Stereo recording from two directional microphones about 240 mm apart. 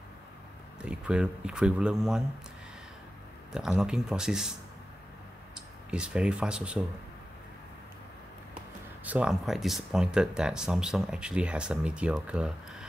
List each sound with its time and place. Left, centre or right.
0.8 s speech: centre
3.5 s speech: centre
5.9 s speech: centre
9.0 s speech: centre